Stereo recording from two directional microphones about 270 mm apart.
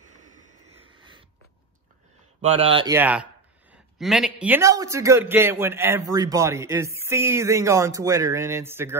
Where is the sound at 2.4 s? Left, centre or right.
Right.